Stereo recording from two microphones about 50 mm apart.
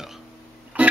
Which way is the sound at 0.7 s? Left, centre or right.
Right.